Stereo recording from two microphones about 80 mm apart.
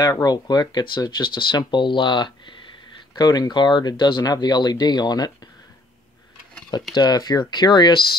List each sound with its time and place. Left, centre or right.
0.2 s speech: left
3.2 s speech: left
7.0 s speech: left